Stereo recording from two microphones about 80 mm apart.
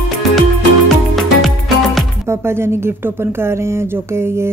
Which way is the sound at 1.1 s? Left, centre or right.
Centre.